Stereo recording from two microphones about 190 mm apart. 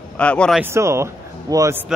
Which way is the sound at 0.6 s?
15° right (ahead or behind).